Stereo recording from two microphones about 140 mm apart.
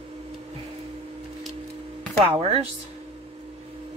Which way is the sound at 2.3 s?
45° right (ahead or behind).